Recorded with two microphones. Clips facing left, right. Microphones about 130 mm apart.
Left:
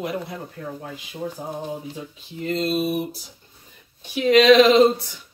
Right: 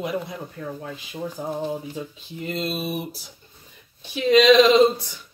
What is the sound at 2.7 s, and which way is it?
Speech, centre (ahead or behind).